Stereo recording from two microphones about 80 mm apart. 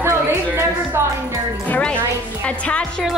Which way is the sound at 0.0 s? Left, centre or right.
Right.